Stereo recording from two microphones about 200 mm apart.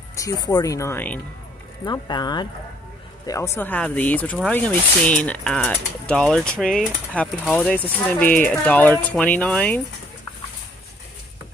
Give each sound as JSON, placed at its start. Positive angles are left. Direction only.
{"t": 0.1, "sound": "speech", "side_deg": 15}
{"t": 1.9, "sound": "speech", "side_deg": 20}